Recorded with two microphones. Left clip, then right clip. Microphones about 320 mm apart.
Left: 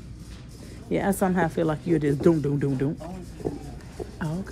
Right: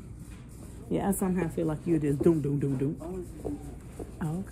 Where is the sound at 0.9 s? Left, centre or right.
Centre.